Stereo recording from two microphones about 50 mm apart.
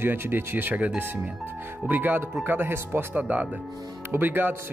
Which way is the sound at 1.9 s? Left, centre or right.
Right.